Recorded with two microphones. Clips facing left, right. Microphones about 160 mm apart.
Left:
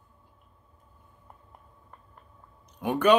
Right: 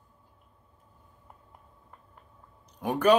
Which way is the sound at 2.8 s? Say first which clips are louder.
Left 1 dB; 35° right (ahead or behind).